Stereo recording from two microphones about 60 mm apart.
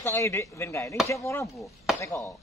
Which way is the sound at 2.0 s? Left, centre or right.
Left.